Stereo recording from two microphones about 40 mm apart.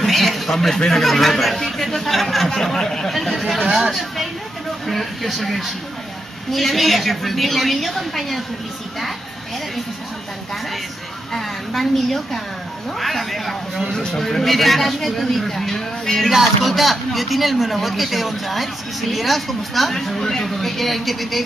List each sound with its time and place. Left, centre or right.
0.0 s a sound: centre
0.9 s a man's voice: centre
11.3 s a man's voice: centre
16.3 s a man's voice: centre